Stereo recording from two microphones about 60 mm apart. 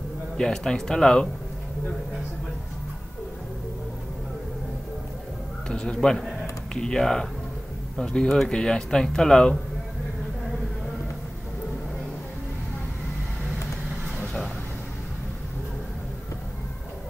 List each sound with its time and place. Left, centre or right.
0.4 s speech: centre
5.7 s speech: centre